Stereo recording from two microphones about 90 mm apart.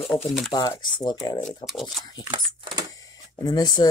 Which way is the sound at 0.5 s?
50° left (ahead or behind).